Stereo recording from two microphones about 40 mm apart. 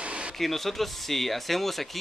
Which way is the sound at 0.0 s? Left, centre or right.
Right.